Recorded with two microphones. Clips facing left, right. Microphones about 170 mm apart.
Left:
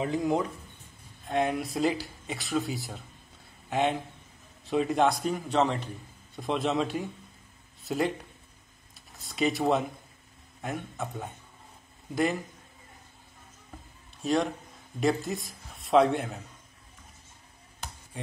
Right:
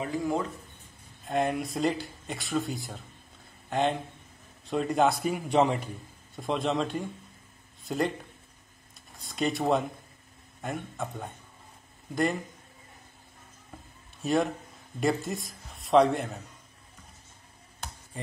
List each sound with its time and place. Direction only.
0.0 s speech: 20° left (ahead or behind)
1.2 s speech: centre (ahead or behind)
6.3 s speech: centre (ahead or behind)
9.1 s speech: centre (ahead or behind)
14.2 s speech: centre (ahead or behind)
18.1 s speech: centre (ahead or behind)